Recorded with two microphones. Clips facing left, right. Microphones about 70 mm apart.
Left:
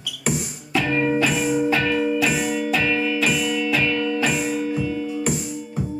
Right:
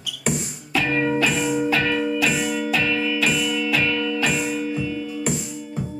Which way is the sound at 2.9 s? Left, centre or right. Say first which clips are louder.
Left 1 dB; centre.